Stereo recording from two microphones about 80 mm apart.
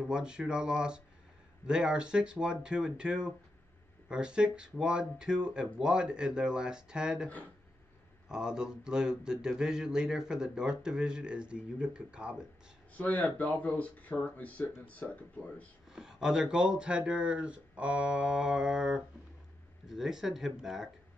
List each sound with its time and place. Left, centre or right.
0.0 s speech: centre
8.3 s speech: centre
12.9 s speech: centre
15.9 s speech: centre